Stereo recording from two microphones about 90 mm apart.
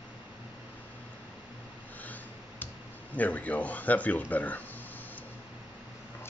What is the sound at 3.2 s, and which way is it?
Speech, 15° left (ahead or behind).